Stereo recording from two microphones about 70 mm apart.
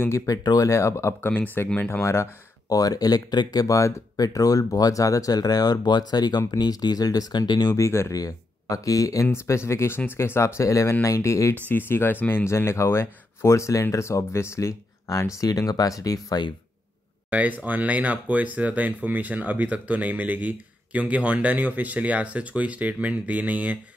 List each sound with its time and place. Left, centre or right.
0.3 s speech: left
1.3 s speech: left
1.9 s speech: left
2.7 s speech: left
3.6 s speech: left
7.7 s speech: left
8.1 s speech: left
9.3 s speech: left
10.6 s speech: left
11.7 s speech: left
12.4 s speech: left
15.3 s speech: left
17.3 s speech: right